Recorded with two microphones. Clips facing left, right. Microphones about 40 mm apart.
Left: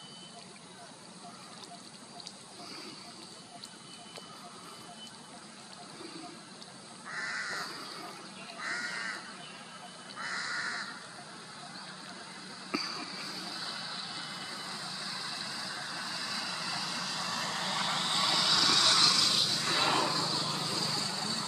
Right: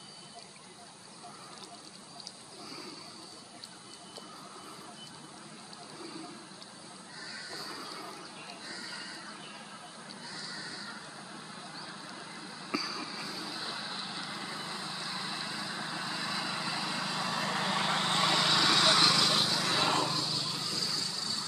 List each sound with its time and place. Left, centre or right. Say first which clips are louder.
7.1 s crow: left 9 dB; left
7.7 s a sound: right 1 dB; centre
8.5 s crow: left 10 dB; left
10.1 s duck: left 9 dB; left
12.1 s vehicle: right 2 dB; centre; by 19.7 s right
20.3 s vehicle: left 2 dB; left